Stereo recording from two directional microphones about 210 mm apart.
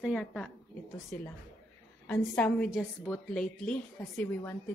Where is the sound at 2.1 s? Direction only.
5° left (ahead or behind).